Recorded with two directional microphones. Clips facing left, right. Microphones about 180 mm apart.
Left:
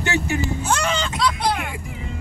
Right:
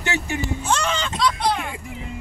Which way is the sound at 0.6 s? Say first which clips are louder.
Left 1 dB; 10° left (ahead or behind).